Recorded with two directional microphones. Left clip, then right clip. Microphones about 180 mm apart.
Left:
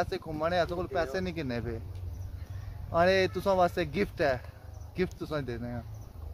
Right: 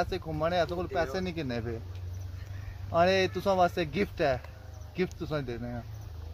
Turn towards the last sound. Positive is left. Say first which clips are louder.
# even
turn(degrees=10)  # may be behind; listen again after turning